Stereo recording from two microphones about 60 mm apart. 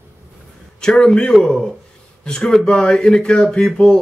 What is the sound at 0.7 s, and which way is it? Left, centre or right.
Speech, centre.